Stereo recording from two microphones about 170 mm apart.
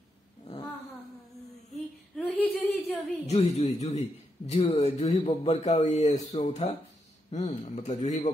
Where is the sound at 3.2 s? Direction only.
40° left (ahead or behind).